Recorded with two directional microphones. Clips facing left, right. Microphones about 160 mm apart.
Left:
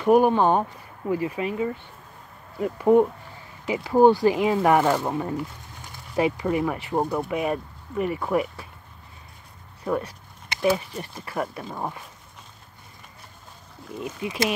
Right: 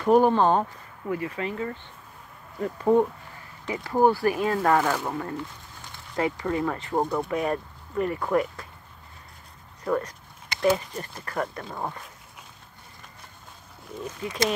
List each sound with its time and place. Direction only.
0.0 s speech: 10° left (ahead or behind)
9.8 s speech: 10° left (ahead or behind)
14.0 s speech: 10° left (ahead or behind)